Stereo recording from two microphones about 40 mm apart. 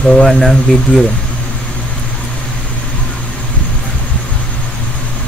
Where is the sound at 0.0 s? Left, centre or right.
Centre.